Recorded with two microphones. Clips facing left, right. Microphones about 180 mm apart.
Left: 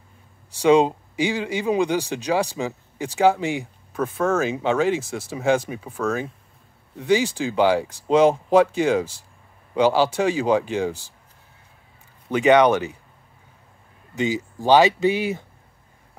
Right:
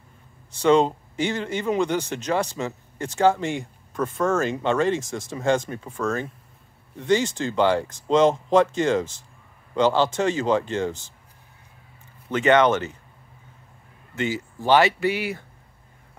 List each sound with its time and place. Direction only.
0.6 s speech: 10° left (ahead or behind)
12.3 s speech: 10° left (ahead or behind)
14.1 s speech: 15° left (ahead or behind)